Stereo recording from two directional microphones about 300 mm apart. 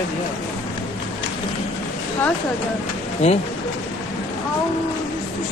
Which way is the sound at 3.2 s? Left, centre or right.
Left.